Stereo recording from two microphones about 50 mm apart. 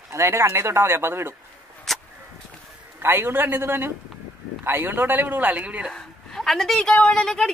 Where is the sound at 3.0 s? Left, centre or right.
Right.